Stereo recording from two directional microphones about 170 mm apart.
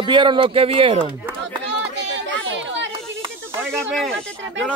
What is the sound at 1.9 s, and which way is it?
Children playing, 90° right.